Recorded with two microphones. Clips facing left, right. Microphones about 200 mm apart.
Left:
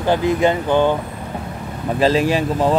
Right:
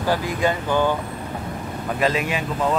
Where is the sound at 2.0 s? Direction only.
30° left (ahead or behind).